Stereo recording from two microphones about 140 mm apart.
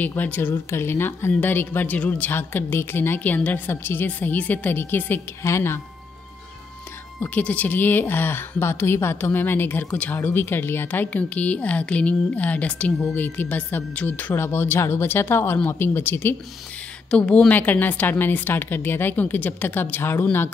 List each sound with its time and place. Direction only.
0.0 s speech: 10° left (ahead or behind)
7.2 s speech: 10° left (ahead or behind)